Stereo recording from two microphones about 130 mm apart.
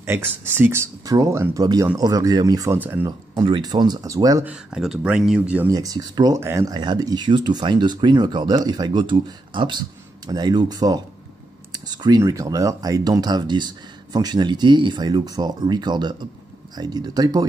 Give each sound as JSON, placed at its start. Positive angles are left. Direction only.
{"t": 0.0, "sound": "speech", "side_deg": -20}
{"t": 1.0, "sound": "speech", "side_deg": -30}
{"t": 3.4, "sound": "speech", "side_deg": -40}
{"t": 4.5, "sound": "speech", "side_deg": -5}
{"t": 5.7, "sound": "speech", "side_deg": -30}
{"t": 11.7, "sound": "clicking", "side_deg": -30}
{"t": 12.2, "sound": "speech", "side_deg": -25}